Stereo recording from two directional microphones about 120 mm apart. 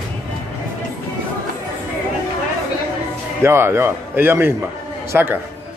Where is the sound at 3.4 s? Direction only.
20° right (ahead or behind).